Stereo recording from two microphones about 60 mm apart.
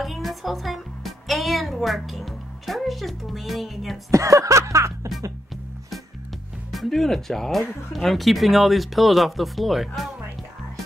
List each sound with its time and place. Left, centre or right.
0.0 s music: centre
4.1 s music: right
6.7 s speech: centre